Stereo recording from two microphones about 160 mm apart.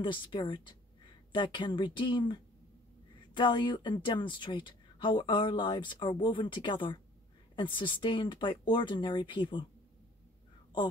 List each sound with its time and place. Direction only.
0.0 s speech: 30° left (ahead or behind)